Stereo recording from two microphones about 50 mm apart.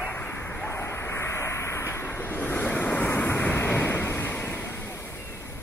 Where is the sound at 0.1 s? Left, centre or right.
Left.